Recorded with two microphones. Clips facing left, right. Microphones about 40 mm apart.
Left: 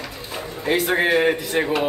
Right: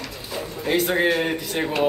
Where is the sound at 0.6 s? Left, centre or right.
Centre.